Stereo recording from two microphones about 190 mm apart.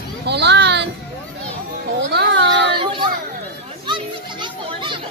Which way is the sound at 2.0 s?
65° right (ahead or behind).